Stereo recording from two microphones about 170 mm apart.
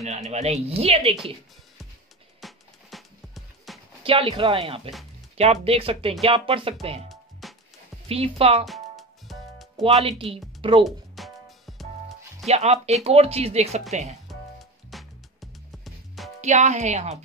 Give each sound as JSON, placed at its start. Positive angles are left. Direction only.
{"t": 0.0, "sound": "speech", "side_deg": -40}
{"t": 2.4, "sound": "music", "side_deg": 0}
{"t": 4.0, "sound": "speech", "side_deg": -30}
{"t": 7.1, "sound": "music", "side_deg": 0}
{"t": 8.1, "sound": "speech", "side_deg": -35}
{"t": 8.6, "sound": "music", "side_deg": 0}
{"t": 10.0, "sound": "speech", "side_deg": -35}
{"t": 10.8, "sound": "music", "side_deg": 0}
{"t": 12.4, "sound": "speech", "side_deg": -40}
{"t": 14.2, "sound": "music", "side_deg": 0}
{"t": 16.3, "sound": "speech", "side_deg": -45}